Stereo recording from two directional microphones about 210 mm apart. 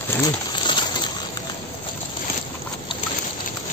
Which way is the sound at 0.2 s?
20° left (ahead or behind).